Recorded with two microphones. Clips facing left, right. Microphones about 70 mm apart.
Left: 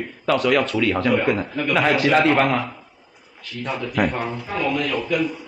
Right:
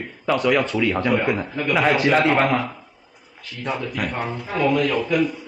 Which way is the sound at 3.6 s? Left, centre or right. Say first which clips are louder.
Left 3 dB; centre.